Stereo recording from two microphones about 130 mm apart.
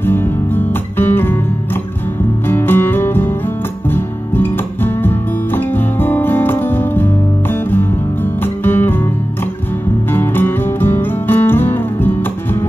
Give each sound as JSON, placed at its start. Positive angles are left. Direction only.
{"t": 0.0, "sound": "music", "side_deg": 15}
{"t": 2.4, "sound": "music", "side_deg": 15}
{"t": 8.4, "sound": "music", "side_deg": 15}
{"t": 10.1, "sound": "music", "side_deg": 15}